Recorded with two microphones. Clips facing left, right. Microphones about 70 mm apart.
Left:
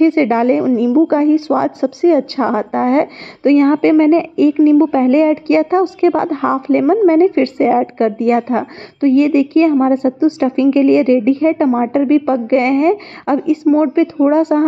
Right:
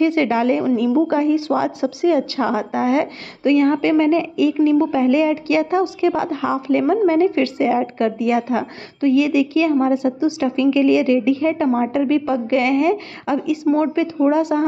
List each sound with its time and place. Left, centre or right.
0.0 s a woman's voice: left
0.6 s a woman's voice: left
1.0 s a woman's voice: left
13.7 s speech: centre
14.3 s a woman's voice: left